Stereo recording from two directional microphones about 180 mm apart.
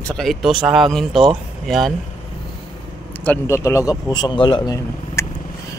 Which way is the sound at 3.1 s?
10° left (ahead or behind).